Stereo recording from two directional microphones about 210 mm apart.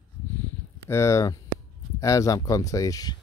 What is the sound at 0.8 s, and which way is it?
Speech, 15° left (ahead or behind).